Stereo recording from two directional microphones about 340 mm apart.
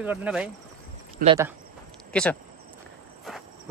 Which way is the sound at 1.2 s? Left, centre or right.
Centre.